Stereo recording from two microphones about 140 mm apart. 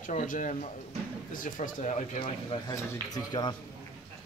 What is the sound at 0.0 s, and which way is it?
Speech, 65° left (ahead or behind).